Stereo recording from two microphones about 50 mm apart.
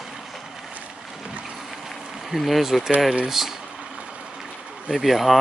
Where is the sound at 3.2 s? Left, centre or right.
Centre.